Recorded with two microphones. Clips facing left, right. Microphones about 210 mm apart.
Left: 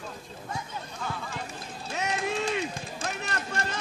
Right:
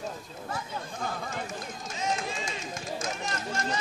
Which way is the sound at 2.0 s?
65° left (ahead or behind).